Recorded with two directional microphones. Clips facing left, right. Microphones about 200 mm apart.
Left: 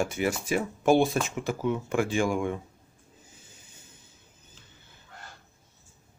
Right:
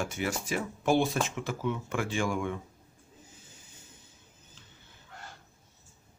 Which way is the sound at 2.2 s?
25° left (ahead or behind).